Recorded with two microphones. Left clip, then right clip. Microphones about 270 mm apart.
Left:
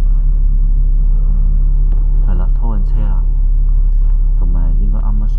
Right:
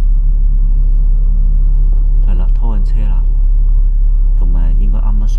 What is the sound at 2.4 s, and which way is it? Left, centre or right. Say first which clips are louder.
Music: right 1 dB; right.